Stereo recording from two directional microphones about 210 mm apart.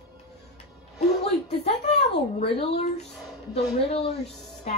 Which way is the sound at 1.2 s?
30° left (ahead or behind).